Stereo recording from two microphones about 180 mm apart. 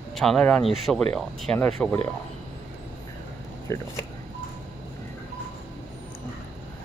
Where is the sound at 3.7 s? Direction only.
15° left (ahead or behind).